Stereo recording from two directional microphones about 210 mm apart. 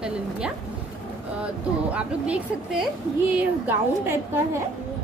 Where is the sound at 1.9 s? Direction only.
5° right (ahead or behind).